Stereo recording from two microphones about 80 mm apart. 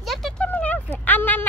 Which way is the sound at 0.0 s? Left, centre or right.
Centre.